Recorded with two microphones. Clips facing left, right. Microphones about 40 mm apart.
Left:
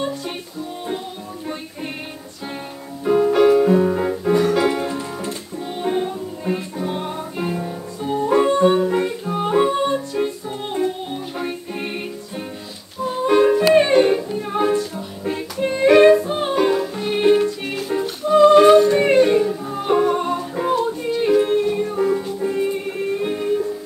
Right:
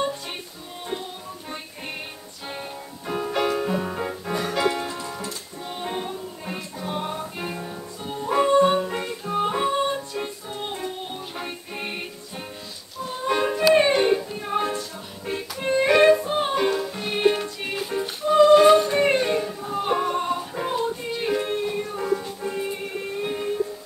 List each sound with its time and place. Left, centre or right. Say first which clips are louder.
3.1 s music: left 10 dB; centre
4.8 s music: left 6 dB; centre
5.8 s music: left 8 dB; centre
11.3 s music: left 6 dB; centre
13.1 s music: left 9 dB; centre
15.5 s music: left 5 dB; centre
18.4 s yodeling: left 4 dB; centre
19.9 s music: left 7 dB; centre